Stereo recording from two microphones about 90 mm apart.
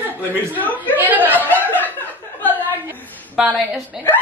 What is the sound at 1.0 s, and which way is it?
Speech, 20° right (ahead or behind).